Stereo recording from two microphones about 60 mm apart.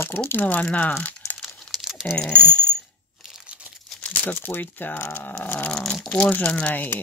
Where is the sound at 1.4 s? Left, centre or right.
Centre.